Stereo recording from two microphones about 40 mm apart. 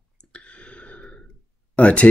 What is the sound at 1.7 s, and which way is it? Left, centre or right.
Speech, left.